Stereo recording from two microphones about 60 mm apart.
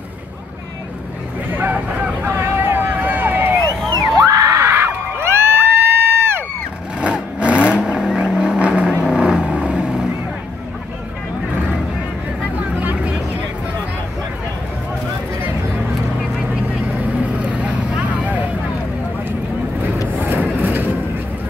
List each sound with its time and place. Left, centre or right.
1.5 s vehicle: right
4.0 s crowd: right
7.0 s vehicle: centre
7.8 s vehicle: centre
17.4 s vehicle: right
20.2 s vehicle: right